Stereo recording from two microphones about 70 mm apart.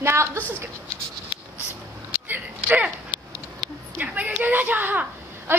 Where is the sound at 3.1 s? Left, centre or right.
Left.